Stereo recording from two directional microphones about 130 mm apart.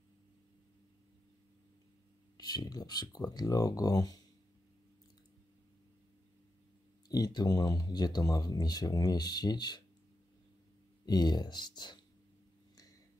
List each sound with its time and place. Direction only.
2.3 s speech: 30° left (ahead or behind)
7.1 s speech: 30° left (ahead or behind)
11.1 s speech: 35° left (ahead or behind)